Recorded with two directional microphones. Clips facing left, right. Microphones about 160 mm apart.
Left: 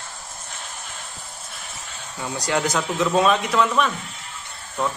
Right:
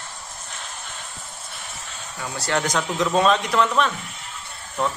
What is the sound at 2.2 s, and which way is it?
A man's voice, 15° left (ahead or behind).